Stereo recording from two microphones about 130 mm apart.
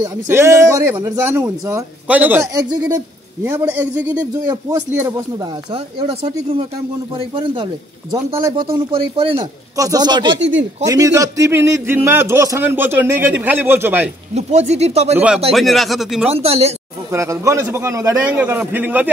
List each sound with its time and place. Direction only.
0.0 s a man's voice: 25° right (ahead or behind)
2.0 s a man's voice: 15° right (ahead or behind)
2.4 s a man's voice: 25° right (ahead or behind)
3.4 s a man's voice: 15° right (ahead or behind)
5.4 s speech: 40° right (ahead or behind)
9.8 s a man's voice: 30° right (ahead or behind)
14.3 s speech: 60° right (ahead or behind)
15.1 s a man's voice: 10° right (ahead or behind)
16.3 s speech: 50° right (ahead or behind)
17.1 s a man's voice: 25° right (ahead or behind)